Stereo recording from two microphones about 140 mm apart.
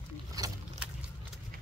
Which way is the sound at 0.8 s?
10° right (ahead or behind).